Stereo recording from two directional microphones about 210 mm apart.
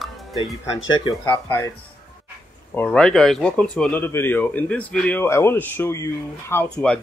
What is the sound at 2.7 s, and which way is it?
Speech, 5° left (ahead or behind).